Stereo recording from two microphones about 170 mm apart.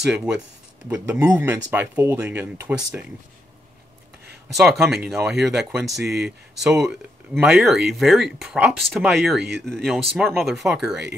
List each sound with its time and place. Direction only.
0.0 s speech: 5° right (ahead or behind)
4.6 s speech: centre (ahead or behind)